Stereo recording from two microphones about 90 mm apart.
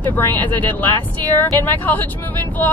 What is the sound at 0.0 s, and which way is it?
A woman's voice, 20° left (ahead or behind).